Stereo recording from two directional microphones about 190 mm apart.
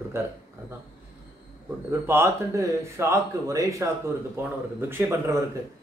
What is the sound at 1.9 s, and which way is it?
Speech, 15° right (ahead or behind).